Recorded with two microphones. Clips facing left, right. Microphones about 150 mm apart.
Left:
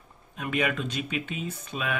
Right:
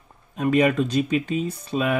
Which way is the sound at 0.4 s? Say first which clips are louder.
Right 9 dB; 40° right (ahead or behind).